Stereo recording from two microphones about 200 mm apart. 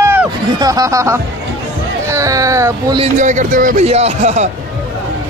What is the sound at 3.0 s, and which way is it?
A man's voice, 35° right (ahead or behind).